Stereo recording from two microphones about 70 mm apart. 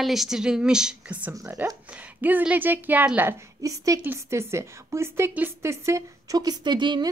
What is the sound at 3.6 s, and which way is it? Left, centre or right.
Speech, right.